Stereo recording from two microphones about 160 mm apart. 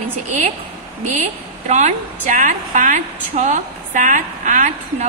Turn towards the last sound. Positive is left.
turn(degrees=-50)  # may be behind; listen again after turning